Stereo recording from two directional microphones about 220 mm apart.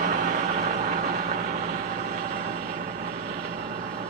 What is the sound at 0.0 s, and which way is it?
Vehicle, 40° right (ahead or behind).